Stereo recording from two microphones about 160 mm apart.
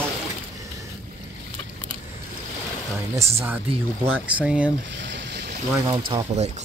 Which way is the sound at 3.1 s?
15° right (ahead or behind).